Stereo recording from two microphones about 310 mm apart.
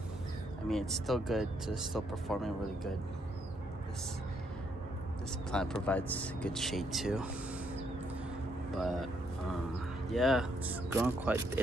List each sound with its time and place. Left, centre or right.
0.7 s speech: centre
5.5 s speech: centre
8.7 s speech: centre
10.1 s speech: centre